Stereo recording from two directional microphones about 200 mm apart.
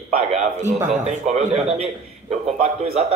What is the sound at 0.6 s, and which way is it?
Speech, 10° right (ahead or behind).